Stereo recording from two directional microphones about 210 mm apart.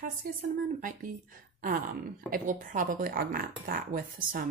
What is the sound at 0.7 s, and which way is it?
Speech, 40° right (ahead or behind).